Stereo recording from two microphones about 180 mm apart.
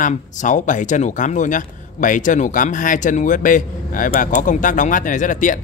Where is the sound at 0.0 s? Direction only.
45° left (ahead or behind).